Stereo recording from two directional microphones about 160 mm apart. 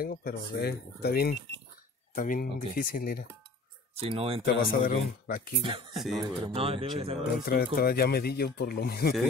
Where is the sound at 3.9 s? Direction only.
40° right (ahead or behind).